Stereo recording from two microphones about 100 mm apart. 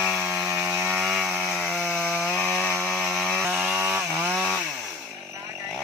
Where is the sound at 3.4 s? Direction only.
10° right (ahead or behind).